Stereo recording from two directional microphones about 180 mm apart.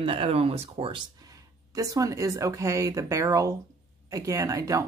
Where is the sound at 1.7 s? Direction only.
20° right (ahead or behind).